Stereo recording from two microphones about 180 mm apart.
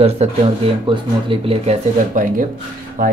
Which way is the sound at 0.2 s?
40° right (ahead or behind).